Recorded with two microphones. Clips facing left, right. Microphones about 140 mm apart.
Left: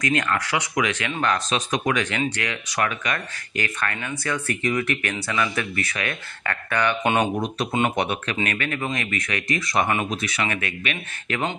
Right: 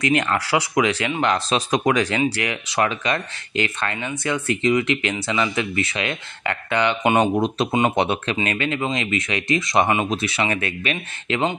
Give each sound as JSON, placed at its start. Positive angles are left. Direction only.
{"t": 0.0, "sound": "speech", "side_deg": -25}
{"t": 7.3, "sound": "speech", "side_deg": -25}